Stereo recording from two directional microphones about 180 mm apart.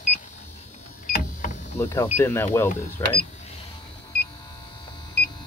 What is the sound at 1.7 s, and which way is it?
Speech, 15° left (ahead or behind).